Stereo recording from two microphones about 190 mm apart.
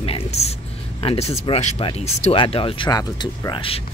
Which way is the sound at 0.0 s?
30° left (ahead or behind).